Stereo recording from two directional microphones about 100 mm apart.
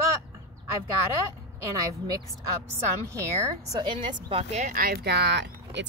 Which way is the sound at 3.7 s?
50° right (ahead or behind).